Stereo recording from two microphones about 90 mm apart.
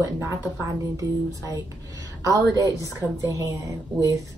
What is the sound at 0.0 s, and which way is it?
A woman's voice, 35° right (ahead or behind).